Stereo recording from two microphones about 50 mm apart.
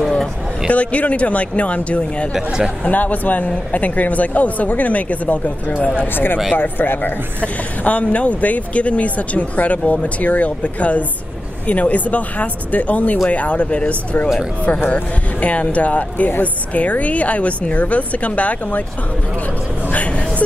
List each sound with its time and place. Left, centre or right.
0.7 s a woman's voice: left
2.3 s speech: centre
2.8 s speech: left
6.1 s speech: left
7.8 s a woman's voice: left
19.9 s a sound: left